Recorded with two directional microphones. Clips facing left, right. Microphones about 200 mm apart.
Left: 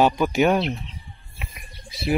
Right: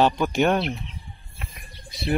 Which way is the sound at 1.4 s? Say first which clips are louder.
Left 1 dB; 5° left (ahead or behind).